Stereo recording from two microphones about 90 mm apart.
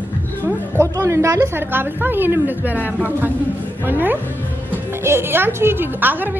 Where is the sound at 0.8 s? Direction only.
35° right (ahead or behind).